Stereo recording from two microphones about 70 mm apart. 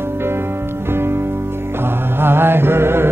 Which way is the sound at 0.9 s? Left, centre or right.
Right.